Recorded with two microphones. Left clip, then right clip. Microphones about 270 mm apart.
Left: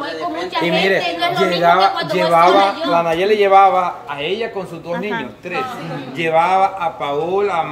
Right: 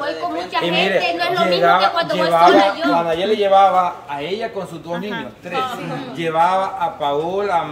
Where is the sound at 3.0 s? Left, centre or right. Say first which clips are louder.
Left 3 dB; left.